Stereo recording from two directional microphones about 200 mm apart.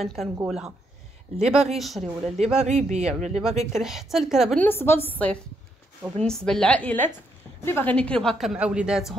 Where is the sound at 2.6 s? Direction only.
35° right (ahead or behind).